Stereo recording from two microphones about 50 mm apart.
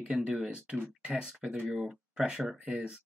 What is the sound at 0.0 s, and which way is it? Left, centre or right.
Speech, centre.